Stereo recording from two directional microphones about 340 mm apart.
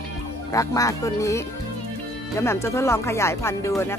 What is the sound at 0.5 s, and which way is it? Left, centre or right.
Speech, centre.